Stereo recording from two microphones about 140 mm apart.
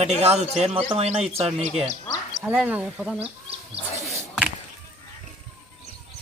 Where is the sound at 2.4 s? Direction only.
10° right (ahead or behind).